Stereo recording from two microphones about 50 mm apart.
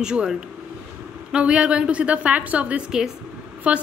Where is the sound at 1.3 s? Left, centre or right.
Right.